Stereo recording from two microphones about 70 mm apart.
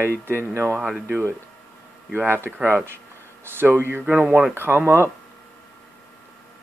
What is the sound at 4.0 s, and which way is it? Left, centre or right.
Speech, right.